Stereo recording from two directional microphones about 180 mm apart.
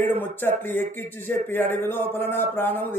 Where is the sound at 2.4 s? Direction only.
10° left (ahead or behind).